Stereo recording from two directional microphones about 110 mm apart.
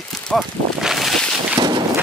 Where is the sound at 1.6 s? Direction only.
45° right (ahead or behind).